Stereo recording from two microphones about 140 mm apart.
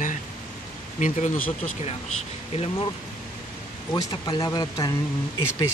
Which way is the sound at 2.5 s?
45° left (ahead or behind).